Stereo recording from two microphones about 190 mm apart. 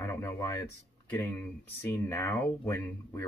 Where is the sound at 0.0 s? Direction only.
15° left (ahead or behind).